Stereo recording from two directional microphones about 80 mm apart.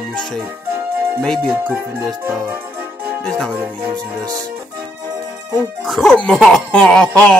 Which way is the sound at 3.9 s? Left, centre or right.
Right.